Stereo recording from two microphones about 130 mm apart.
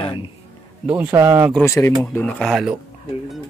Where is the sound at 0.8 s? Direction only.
10° right (ahead or behind).